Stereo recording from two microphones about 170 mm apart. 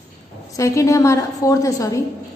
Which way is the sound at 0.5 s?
20° left (ahead or behind).